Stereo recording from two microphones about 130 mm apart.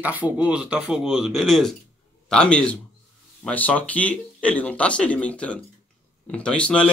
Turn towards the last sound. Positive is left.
turn(degrees=10)  # may be behind; listen again after turning